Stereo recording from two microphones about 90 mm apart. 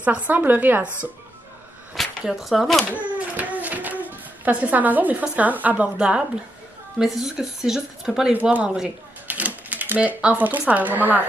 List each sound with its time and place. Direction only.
0.0 s speech: 15° right (ahead or behind)
2.0 s speech: centre (ahead or behind)
3.3 s speech: 15° right (ahead or behind)
8.3 s speech: 15° right (ahead or behind)